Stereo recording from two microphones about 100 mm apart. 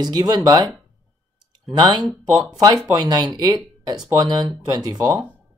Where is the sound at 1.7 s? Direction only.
45° right (ahead or behind).